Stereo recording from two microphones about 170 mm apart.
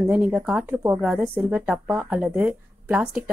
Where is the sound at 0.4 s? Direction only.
5° right (ahead or behind).